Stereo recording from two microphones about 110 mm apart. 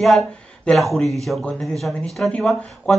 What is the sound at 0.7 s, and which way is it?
Speech, centre (ahead or behind).